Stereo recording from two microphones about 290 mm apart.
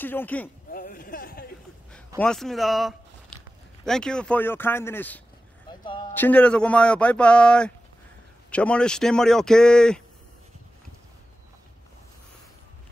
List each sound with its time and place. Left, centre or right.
0.0 s speech: centre
0.7 s a sound: left
2.1 s a man's voice: centre